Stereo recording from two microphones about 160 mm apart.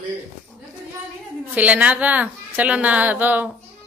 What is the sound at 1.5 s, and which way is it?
A woman's voice, 10° right (ahead or behind).